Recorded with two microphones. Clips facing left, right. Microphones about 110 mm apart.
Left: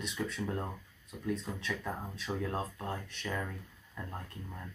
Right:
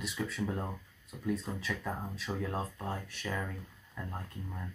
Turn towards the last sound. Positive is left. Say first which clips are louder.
# right 1 dB
turn(degrees=0)  # may be behind; listen again after turning